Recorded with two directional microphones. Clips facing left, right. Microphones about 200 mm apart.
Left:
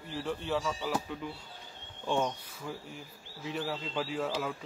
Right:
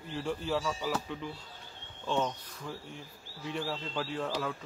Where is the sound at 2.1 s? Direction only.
10° left (ahead or behind).